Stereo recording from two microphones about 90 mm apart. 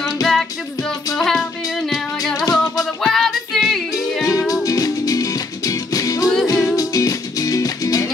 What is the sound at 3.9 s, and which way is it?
Music, 40° left (ahead or behind).